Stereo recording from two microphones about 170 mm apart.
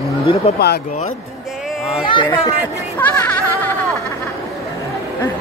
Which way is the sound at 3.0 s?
10° left (ahead or behind).